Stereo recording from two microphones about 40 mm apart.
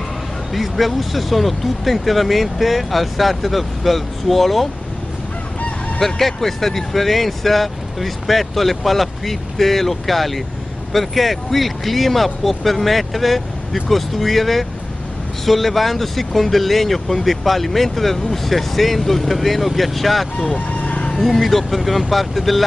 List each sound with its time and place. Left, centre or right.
0.5 s speech: centre
5.9 s speech: centre
20.4 s vehicle: left
21.2 s speech: centre